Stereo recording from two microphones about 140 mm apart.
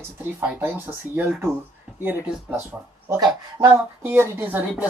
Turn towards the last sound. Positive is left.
turn(degrees=-10)  # may be behind; listen again after turning